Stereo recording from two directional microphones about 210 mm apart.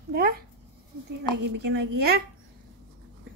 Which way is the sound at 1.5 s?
50° right (ahead or behind).